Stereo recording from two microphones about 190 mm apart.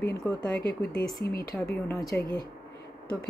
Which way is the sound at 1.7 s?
15° left (ahead or behind).